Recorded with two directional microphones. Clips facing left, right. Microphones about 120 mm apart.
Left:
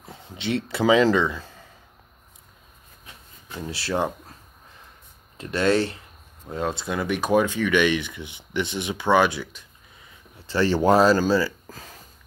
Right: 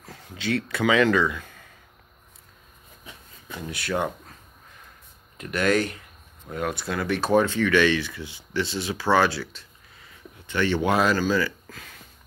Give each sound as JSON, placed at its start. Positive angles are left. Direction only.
{"t": 0.0, "sound": "speech", "side_deg": 25}
{"t": 3.6, "sound": "speech", "side_deg": 30}
{"t": 5.4, "sound": "speech", "side_deg": 30}
{"t": 10.4, "sound": "speech", "side_deg": 35}